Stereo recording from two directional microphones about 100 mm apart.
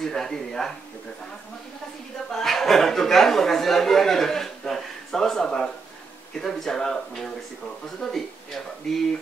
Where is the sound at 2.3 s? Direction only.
5° left (ahead or behind).